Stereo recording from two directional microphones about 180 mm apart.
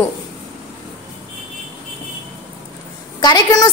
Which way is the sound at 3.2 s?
20° left (ahead or behind).